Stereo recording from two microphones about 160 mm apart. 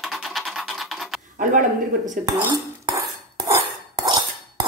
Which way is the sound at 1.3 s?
50° right (ahead or behind).